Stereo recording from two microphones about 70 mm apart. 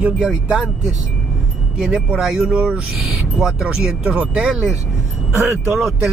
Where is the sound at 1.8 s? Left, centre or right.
Centre.